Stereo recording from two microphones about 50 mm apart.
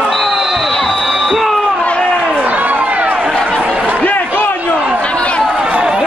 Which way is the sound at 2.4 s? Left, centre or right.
Right.